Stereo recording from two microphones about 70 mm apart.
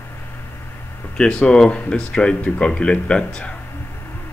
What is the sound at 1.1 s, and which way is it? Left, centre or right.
Speech, centre.